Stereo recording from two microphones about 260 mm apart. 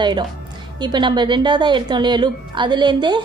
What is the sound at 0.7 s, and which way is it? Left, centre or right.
A woman's voice, centre.